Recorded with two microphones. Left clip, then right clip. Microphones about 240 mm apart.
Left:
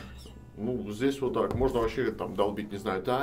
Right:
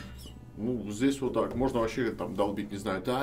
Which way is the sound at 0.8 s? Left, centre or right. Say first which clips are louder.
Left 1 dB; centre.